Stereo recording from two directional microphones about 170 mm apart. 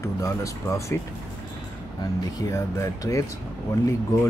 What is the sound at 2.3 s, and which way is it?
Speech, 20° left (ahead or behind).